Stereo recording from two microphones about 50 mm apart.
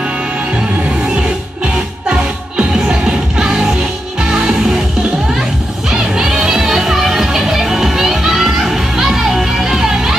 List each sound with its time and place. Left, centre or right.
2.0 s music: centre
5.9 s music: centre